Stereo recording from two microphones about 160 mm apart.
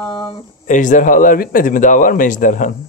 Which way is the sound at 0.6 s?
50° left (ahead or behind).